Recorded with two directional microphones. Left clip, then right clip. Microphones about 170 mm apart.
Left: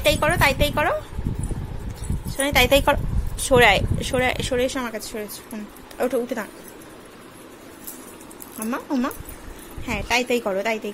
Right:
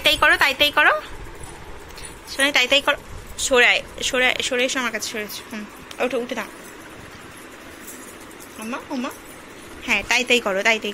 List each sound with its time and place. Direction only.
0.0 s a woman's voice: 15° left (ahead or behind)
2.2 s speech: 20° left (ahead or behind)
5.9 s a woman's voice: 35° left (ahead or behind)
9.8 s a woman's voice: 15° left (ahead or behind)